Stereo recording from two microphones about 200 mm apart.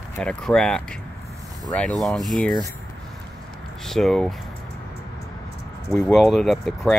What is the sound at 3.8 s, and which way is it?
Speech, centre (ahead or behind).